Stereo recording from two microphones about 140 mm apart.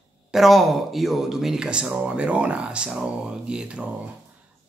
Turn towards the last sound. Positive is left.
turn(degrees=-5)  # may be behind; listen again after turning